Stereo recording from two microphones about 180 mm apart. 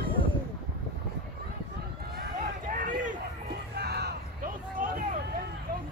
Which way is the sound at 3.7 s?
65° right (ahead or behind).